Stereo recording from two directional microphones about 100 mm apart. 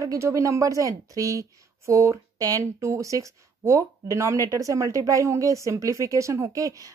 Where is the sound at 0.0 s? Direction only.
30° right (ahead or behind).